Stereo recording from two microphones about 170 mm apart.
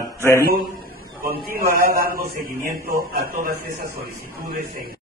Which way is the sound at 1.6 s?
60° right (ahead or behind).